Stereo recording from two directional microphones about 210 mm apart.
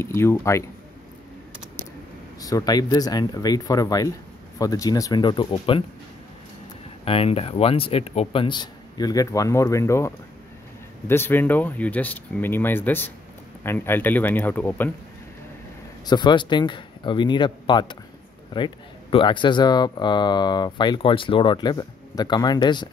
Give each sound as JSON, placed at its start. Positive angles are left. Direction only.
{"t": 0.0, "sound": "speech", "side_deg": 10}
{"t": 2.4, "sound": "speech", "side_deg": 20}
{"t": 7.1, "sound": "speech", "side_deg": 25}
{"t": 16.1, "sound": "speech", "side_deg": 20}